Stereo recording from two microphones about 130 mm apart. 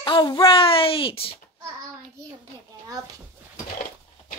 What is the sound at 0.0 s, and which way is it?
Speech, 35° left (ahead or behind).